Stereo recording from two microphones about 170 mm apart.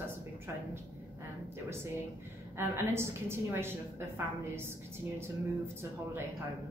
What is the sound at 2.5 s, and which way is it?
A woman's voice, 15° right (ahead or behind).